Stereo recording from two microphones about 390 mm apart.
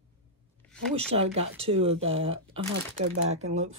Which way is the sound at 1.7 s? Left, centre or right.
Centre.